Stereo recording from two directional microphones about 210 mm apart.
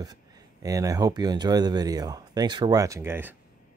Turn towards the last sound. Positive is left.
turn(degrees=-10)  # may be behind; listen again after turning